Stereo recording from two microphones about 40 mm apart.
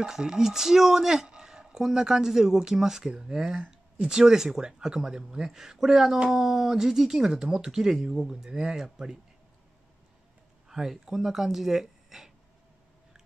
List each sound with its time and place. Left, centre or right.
0.0 s speech: centre
10.7 s speech: centre